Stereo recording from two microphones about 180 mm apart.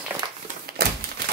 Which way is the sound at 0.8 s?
60° right (ahead or behind).